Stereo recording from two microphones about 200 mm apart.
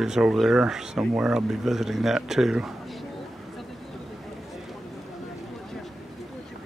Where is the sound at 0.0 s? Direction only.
Centre (ahead or behind).